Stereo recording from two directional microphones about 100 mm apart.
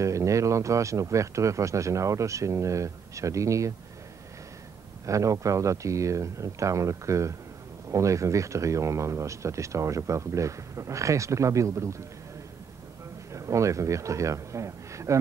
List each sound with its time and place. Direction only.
0.0 s speech: 30° right (ahead or behind)
5.0 s speech: 30° right (ahead or behind)
13.3 s a man's voice: 30° right (ahead or behind)